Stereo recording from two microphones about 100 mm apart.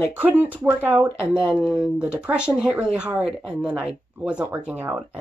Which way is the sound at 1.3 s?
10° right (ahead or behind).